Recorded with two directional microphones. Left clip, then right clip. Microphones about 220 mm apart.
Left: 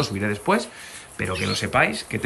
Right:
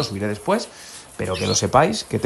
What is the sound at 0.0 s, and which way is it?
Speech, 5° right (ahead or behind).